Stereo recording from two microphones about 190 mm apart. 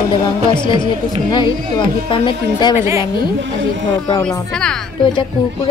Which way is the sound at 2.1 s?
25° left (ahead or behind).